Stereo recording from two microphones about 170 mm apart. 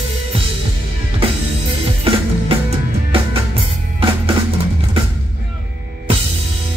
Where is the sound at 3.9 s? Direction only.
30° right (ahead or behind).